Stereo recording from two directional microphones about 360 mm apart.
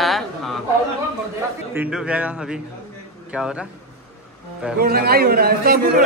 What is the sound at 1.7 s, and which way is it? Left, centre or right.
Speech, centre.